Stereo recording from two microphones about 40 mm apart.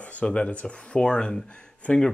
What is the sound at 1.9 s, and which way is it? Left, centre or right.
Speech, left.